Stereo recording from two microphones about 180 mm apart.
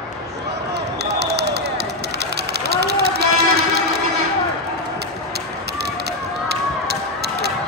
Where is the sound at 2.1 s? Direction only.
65° right (ahead or behind).